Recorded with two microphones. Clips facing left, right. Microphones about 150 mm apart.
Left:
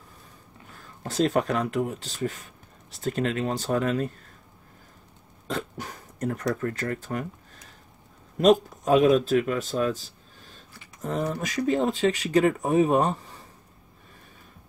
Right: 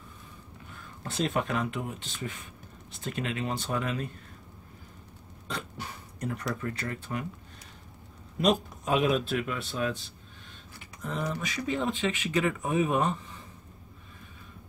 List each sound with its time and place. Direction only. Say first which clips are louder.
0.7 s speech: left 7 dB; 40° left (ahead or behind)
5.5 s speech: left 6 dB; 45° left (ahead or behind)